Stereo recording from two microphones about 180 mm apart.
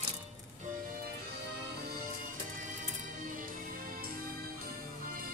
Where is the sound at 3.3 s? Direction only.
50° right (ahead or behind).